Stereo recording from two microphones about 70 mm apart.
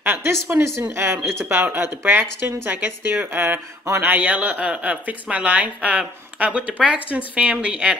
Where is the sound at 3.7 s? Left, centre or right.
Right.